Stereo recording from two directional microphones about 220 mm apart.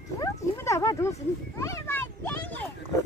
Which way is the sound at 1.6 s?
15° left (ahead or behind).